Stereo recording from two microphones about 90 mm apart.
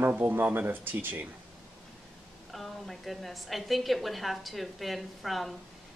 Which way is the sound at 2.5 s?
Centre (ahead or behind).